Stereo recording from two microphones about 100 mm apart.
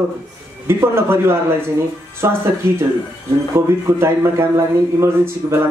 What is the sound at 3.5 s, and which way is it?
Speech, 25° right (ahead or behind).